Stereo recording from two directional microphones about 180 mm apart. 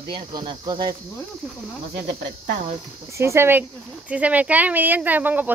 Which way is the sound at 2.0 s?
70° right (ahead or behind).